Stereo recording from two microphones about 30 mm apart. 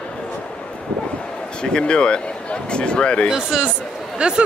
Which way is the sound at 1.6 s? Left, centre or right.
Left.